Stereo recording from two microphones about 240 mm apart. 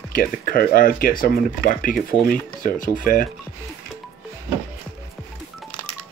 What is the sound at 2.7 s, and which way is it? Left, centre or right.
Speech, left.